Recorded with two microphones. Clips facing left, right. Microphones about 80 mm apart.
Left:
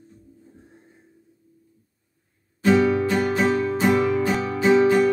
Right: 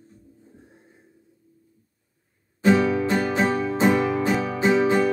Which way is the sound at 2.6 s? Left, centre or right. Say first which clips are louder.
Left 1 dB; right.